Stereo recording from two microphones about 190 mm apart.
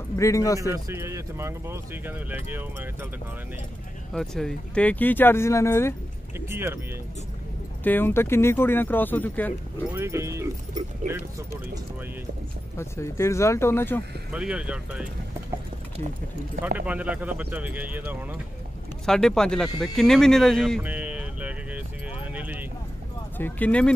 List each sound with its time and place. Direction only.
0.2 s speech: 15° left (ahead or behind)
0.6 s speech: 15° right (ahead or behind)
4.1 s speech: 5° left (ahead or behind)
6.5 s speech: 15° right (ahead or behind)
7.8 s speech: 10° left (ahead or behind)
9.9 s speech: 15° right (ahead or behind)
12.7 s speech: 15° left (ahead or behind)
14.3 s speech: 5° right (ahead or behind)
16.6 s speech: 10° right (ahead or behind)
19.0 s speech: 5° left (ahead or behind)
20.8 s a sound: 10° right (ahead or behind)
23.3 s speech: 10° left (ahead or behind)